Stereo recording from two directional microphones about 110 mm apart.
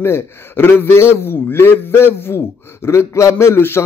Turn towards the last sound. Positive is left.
turn(degrees=20)  # may be behind; listen again after turning